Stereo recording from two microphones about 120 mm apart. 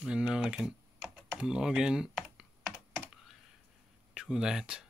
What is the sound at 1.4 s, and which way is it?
Computer keyboard, 5° right (ahead or behind).